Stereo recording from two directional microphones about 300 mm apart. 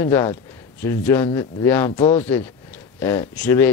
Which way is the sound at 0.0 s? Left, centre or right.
Centre.